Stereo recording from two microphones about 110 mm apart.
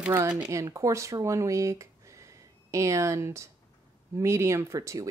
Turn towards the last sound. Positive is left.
turn(degrees=-30)  # may be behind; listen again after turning